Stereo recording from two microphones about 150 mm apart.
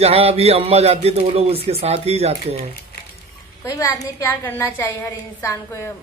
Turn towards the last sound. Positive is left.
turn(degrees=15)  # may be behind; listen again after turning